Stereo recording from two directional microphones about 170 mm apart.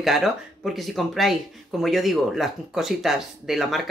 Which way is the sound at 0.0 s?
Centre (ahead or behind).